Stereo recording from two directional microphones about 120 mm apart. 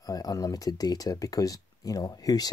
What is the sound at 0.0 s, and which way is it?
Speech, 30° left (ahead or behind).